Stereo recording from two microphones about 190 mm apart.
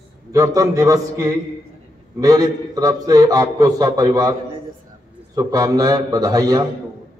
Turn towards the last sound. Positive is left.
turn(degrees=-20)  # may be behind; listen again after turning